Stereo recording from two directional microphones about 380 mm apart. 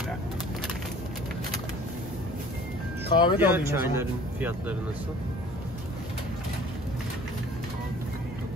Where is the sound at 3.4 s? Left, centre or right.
Centre.